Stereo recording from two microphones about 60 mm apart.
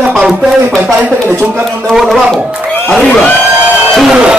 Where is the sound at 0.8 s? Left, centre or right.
Right.